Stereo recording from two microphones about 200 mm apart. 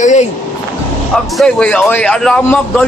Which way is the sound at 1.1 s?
5° left (ahead or behind).